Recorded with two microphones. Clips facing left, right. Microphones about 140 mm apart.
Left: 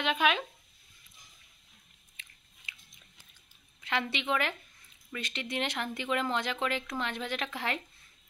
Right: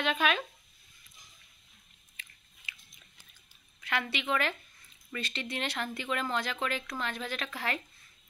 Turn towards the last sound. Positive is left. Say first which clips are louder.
# left 1 dB
turn(degrees=20)  # may be behind; listen again after turning